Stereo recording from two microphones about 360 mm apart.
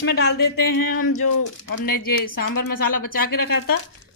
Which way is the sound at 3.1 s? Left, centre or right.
Left.